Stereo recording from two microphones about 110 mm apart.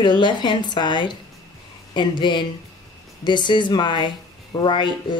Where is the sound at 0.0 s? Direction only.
45° left (ahead or behind).